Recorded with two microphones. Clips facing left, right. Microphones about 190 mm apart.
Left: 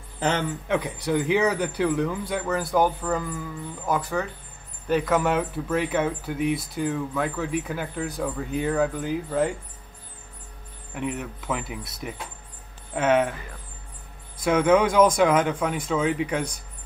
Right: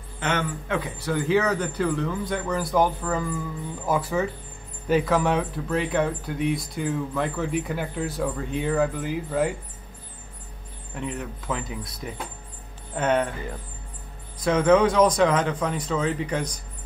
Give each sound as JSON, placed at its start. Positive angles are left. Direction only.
{"t": 0.2, "sound": "a man's voice", "side_deg": 30}
{"t": 0.7, "sound": "speech", "side_deg": 15}
{"t": 11.0, "sound": "speech", "side_deg": 10}
{"t": 12.9, "sound": "speech", "side_deg": 5}
{"t": 14.4, "sound": "speech", "side_deg": 10}